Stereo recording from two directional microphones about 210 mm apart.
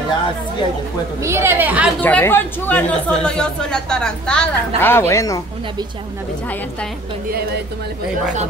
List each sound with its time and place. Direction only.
1.2 s a woman's voice: 10° right (ahead or behind)
2.0 s speech: 10° left (ahead or behind)
7.2 s speech: 50° right (ahead or behind)